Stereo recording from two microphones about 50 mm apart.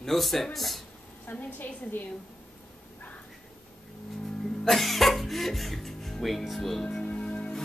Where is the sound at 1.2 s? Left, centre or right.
Left.